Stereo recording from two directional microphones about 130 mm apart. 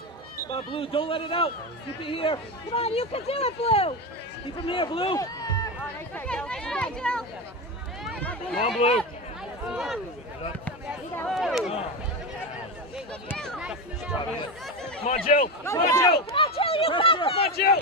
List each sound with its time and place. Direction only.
0.5 s speech: 40° left (ahead or behind)
5.1 s run: 30° left (ahead or behind)
6.1 s speech: 10° left (ahead or behind)
8.5 s speech: 45° left (ahead or behind)
9.7 s speech: 5° right (ahead or behind)
11.2 s speech: centre (ahead or behind)
13.6 s a sound: 5° right (ahead or behind)
15.0 s speech: 90° left
15.6 s speech: 25° left (ahead or behind)
16.3 s speech: 50° left (ahead or behind)